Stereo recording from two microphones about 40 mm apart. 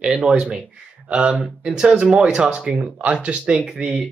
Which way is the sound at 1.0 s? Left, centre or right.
Right.